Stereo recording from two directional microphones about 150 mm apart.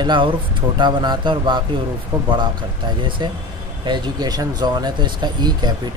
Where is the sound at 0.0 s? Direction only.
30° right (ahead or behind).